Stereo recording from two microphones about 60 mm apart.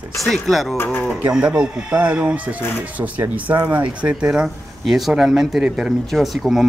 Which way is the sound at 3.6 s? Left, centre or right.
Right.